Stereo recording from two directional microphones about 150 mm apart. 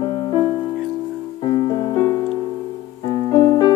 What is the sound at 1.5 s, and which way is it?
Music, 25° left (ahead or behind).